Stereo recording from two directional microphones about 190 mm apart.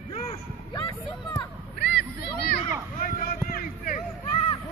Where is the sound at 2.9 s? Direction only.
45° left (ahead or behind).